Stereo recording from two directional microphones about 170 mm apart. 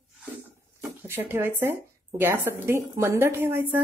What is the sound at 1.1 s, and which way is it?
Speech, 10° right (ahead or behind).